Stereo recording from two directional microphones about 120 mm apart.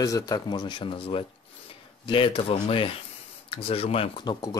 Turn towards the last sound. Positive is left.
turn(degrees=35)  # may be behind; listen again after turning